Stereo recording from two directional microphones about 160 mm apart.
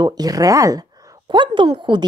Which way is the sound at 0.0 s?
25° right (ahead or behind).